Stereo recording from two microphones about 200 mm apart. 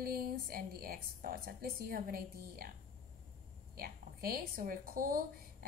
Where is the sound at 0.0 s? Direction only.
50° right (ahead or behind).